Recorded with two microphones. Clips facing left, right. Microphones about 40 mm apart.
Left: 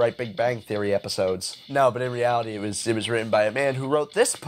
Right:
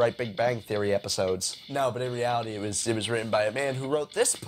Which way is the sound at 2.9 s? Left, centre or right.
Left.